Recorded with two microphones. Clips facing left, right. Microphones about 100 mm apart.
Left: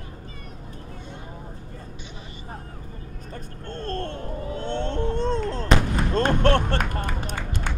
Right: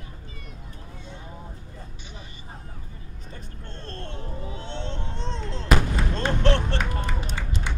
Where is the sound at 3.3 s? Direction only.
50° left (ahead or behind).